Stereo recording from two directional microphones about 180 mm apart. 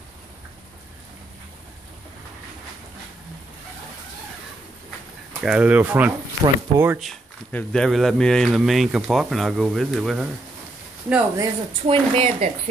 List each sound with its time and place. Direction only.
5.4 s speech: 5° right (ahead or behind)
7.0 s speech: 5° left (ahead or behind)
11.8 s speech: 35° right (ahead or behind)